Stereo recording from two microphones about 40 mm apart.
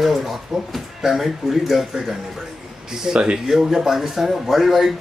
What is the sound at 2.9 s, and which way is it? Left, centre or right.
Speech, centre.